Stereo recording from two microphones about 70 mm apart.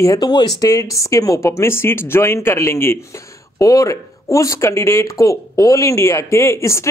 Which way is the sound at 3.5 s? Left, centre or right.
Left.